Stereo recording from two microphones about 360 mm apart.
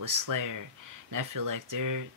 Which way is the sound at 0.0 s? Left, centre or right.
Right.